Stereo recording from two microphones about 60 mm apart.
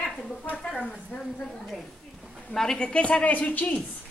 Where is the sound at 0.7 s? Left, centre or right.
Centre.